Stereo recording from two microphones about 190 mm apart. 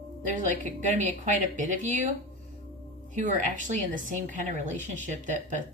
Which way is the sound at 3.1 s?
40° right (ahead or behind).